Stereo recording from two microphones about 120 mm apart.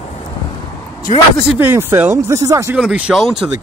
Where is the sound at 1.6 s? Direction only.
20° right (ahead or behind).